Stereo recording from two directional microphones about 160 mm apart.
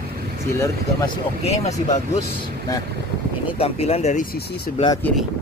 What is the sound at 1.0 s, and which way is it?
Speech, 40° left (ahead or behind).